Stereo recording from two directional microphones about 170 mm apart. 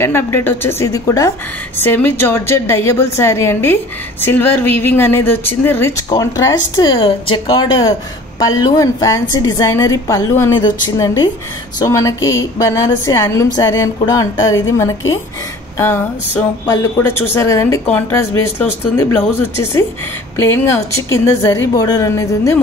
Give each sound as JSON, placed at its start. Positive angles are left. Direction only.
{"t": 0.0, "sound": "a woman's voice", "side_deg": 15}